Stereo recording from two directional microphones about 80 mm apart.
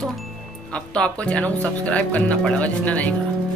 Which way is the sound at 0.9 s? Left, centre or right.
Centre.